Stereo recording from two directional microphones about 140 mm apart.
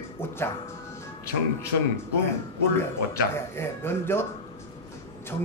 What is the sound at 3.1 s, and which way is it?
Speech, 20° left (ahead or behind).